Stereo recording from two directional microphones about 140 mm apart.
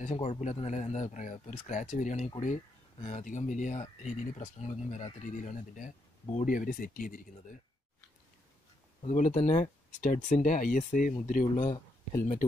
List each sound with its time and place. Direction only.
0.0 s speech: 55° left (ahead or behind); by 7.5 s 75° left (ahead or behind)
9.0 s speech: 60° left (ahead or behind)
11.6 s speech: 25° left (ahead or behind)